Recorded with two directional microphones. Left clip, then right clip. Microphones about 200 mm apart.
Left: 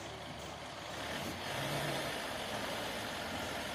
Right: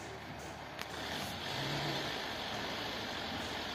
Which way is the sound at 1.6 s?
50° left (ahead or behind).